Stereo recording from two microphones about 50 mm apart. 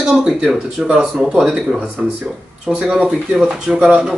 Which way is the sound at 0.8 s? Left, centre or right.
Right.